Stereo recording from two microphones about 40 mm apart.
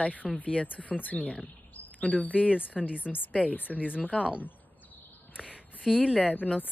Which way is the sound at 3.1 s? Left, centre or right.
Left.